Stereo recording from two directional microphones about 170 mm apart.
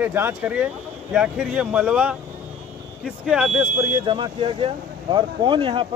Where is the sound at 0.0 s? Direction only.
15° right (ahead or behind).